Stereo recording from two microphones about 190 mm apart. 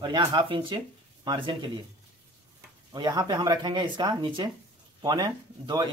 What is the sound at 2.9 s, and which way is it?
Speech, 25° right (ahead or behind).